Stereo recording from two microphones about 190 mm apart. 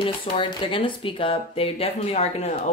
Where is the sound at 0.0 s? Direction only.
25° left (ahead or behind).